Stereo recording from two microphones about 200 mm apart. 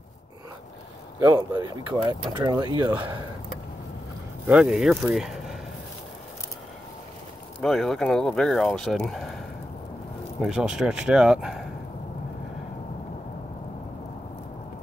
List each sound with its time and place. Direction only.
1.2 s speech: 20° right (ahead or behind)
4.5 s speech: 5° right (ahead or behind)
7.6 s speech: centre (ahead or behind)
10.4 s speech: 5° right (ahead or behind)